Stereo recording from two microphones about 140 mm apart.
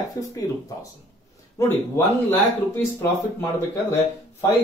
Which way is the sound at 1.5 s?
15° left (ahead or behind).